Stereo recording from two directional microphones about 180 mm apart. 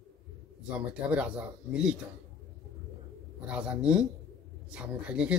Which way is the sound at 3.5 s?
5° right (ahead or behind).